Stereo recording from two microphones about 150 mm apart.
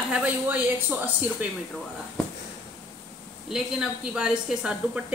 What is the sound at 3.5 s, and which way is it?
Speech, 5° right (ahead or behind).